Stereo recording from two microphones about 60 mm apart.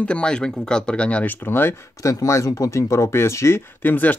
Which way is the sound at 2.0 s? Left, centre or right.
Left.